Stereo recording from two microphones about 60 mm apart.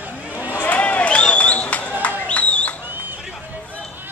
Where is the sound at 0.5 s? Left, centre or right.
Left.